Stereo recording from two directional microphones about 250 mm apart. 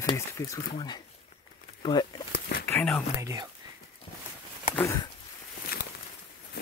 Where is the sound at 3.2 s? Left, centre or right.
Centre.